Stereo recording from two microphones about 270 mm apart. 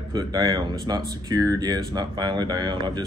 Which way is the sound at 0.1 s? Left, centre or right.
Centre.